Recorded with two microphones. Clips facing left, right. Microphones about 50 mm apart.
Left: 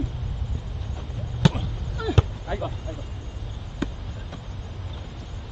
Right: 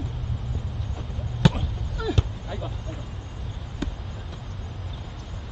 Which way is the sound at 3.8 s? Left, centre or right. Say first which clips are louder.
Left 3 dB; centre.